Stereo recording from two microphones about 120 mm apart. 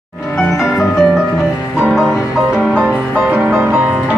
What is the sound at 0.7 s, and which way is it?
Music, centre (ahead or behind).